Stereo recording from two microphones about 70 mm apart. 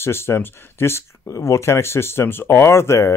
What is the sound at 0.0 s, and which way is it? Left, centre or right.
Speech, left.